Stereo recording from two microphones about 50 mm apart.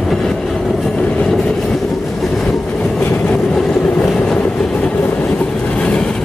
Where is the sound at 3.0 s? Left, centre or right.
Left.